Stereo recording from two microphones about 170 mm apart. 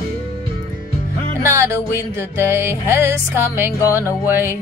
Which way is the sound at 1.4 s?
15° right (ahead or behind).